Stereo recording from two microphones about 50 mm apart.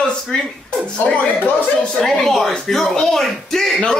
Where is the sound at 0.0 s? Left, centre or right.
Left.